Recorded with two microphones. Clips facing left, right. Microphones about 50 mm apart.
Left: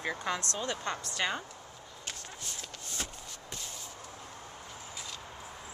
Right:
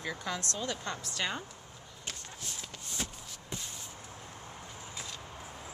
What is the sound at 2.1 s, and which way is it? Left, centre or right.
Run, centre.